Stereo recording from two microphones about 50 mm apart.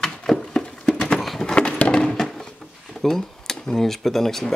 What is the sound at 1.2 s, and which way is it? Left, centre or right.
Horse, centre.